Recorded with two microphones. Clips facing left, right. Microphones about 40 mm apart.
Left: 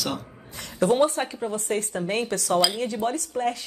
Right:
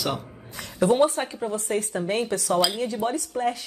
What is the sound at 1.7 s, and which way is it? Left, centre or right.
Speech, centre.